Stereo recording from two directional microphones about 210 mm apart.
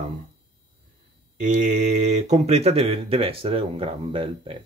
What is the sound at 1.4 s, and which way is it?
Speech, 35° right (ahead or behind).